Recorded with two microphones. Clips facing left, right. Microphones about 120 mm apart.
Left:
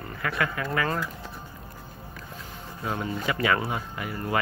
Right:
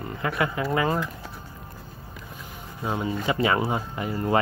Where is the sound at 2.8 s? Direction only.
20° right (ahead or behind).